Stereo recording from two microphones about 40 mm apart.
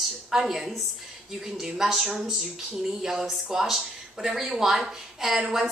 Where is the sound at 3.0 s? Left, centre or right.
Centre.